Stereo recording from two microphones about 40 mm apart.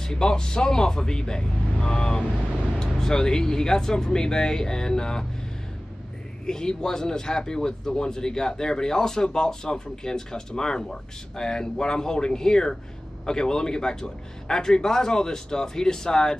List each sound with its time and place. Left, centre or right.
0.0 s speech: centre
6.4 s speech: centre